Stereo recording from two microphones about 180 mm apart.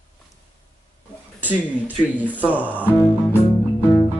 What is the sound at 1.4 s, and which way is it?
Speech, 10° right (ahead or behind).